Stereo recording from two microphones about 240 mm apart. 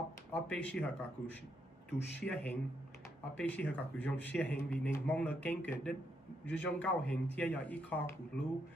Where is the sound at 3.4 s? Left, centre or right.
Centre.